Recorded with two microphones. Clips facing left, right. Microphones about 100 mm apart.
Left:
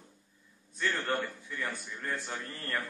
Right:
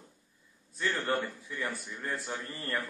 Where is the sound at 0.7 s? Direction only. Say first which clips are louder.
Right 1 dB; 5° right (ahead or behind).